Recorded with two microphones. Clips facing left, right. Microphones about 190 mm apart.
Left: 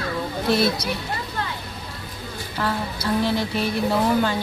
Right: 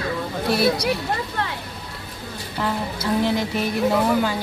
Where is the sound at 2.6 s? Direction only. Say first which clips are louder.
Right 1 dB; 15° right (ahead or behind).